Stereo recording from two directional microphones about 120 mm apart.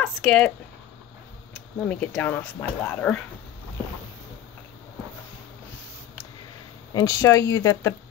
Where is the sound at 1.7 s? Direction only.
10° left (ahead or behind).